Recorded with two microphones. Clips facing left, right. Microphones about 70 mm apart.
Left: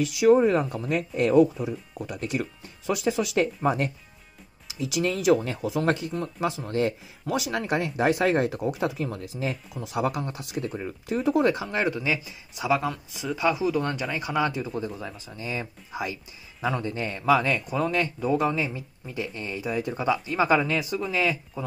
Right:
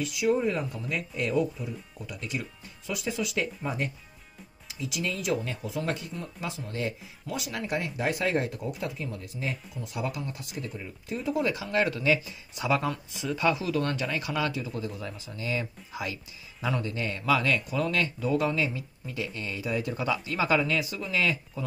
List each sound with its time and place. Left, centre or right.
0.0 s speech: left
0.3 s speech: left
1.7 s speech: left
11.7 s speech: left